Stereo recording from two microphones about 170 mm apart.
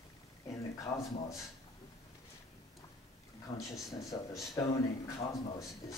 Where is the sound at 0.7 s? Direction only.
20° left (ahead or behind).